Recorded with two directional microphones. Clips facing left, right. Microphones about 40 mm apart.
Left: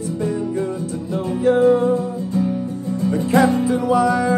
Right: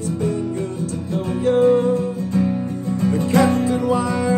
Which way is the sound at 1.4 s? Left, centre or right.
Centre.